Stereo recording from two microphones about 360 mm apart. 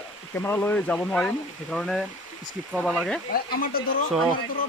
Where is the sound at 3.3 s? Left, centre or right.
Left.